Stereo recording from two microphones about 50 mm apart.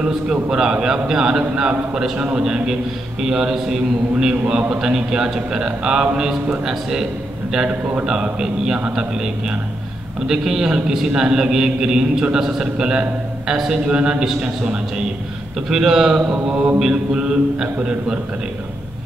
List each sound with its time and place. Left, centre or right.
0.0 s a man's voice: centre
1.5 s mantra: right
2.4 s a man's voice: centre
13.7 s mantra: centre
15.7 s a man's voice: centre
16.4 s mantra: right